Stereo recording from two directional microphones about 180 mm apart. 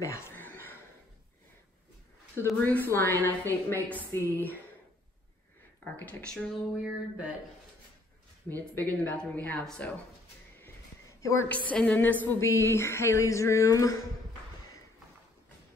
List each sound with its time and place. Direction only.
0.0 s a sound: 15° left (ahead or behind)
2.3 s a woman's voice: 10° left (ahead or behind)
4.1 s speech: 15° right (ahead or behind)
5.9 s speech: 5° left (ahead or behind)
8.7 s a woman's voice: 5° left (ahead or behind)
10.6 s a sound: 15° left (ahead or behind)
12.4 s a woman's voice: 15° left (ahead or behind)